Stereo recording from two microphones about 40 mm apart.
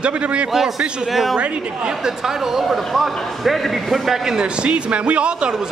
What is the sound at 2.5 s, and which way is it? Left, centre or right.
A man's voice, centre.